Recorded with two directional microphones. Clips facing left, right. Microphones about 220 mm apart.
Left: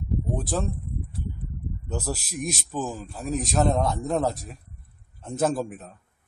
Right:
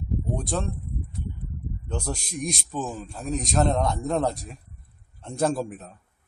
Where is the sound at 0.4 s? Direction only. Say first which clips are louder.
Left 2 dB; 5° left (ahead or behind).